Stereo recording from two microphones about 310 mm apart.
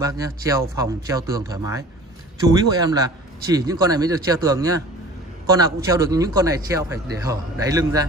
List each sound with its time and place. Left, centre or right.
0.0 s a man's voice: centre